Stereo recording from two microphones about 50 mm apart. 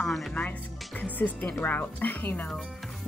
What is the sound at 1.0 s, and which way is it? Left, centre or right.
Speech, left.